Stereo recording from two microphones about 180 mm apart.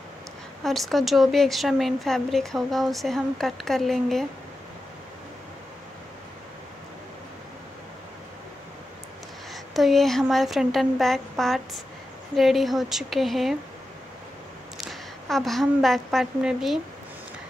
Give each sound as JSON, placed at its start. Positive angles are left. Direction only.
{"t": 0.7, "sound": "speech", "side_deg": 0}
{"t": 9.5, "sound": "speech", "side_deg": 0}
{"t": 14.8, "sound": "a woman's voice", "side_deg": 0}